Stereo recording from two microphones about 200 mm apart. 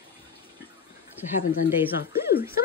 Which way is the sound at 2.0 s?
55° left (ahead or behind).